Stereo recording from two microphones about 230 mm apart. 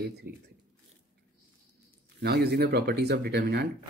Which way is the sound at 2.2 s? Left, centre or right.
Right.